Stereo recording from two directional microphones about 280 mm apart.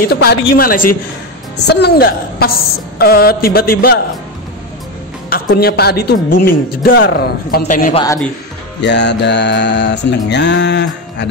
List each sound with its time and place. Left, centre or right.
0.1 s speech: left
5.3 s speech: left